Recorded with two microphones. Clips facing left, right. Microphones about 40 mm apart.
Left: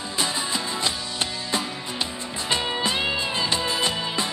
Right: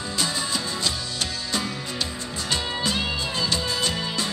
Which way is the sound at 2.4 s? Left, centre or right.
Left.